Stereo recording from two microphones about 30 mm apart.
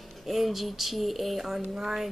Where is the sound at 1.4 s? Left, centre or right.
Centre.